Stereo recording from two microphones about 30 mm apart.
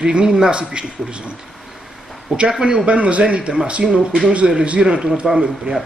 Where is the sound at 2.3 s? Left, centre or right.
Centre.